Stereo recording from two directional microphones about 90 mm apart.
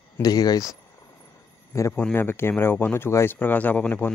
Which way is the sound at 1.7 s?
35° left (ahead or behind).